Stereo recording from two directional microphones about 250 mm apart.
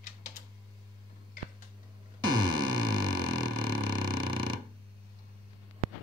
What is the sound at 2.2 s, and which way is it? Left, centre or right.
Synthesizer, centre.